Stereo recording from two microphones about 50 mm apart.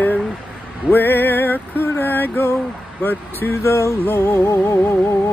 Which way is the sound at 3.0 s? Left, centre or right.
Left.